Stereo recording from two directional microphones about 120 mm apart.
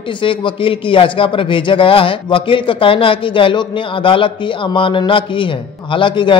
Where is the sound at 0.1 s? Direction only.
45° left (ahead or behind).